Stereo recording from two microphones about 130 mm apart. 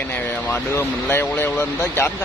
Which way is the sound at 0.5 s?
15° left (ahead or behind).